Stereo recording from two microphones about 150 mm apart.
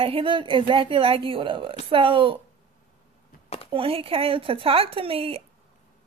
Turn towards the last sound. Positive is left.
turn(degrees=-40)  # may be behind; listen again after turning